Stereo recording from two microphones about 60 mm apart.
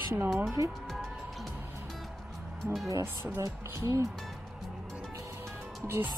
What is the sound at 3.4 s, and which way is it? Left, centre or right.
Speech, right.